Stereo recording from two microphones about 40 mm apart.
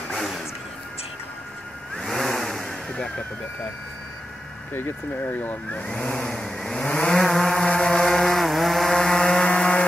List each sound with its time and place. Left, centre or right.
0.1 s vehicle: centre
2.0 s vehicle: centre
4.7 s speech: left
5.9 s vehicle: left
6.9 s vehicle: left
7.2 s vehicle: centre
8.0 s a sound: centre
9.1 s a sound: centre